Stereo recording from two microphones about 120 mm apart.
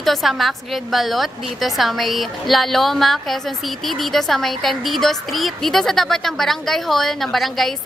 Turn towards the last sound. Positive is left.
turn(degrees=0)  # may be behind; listen again after turning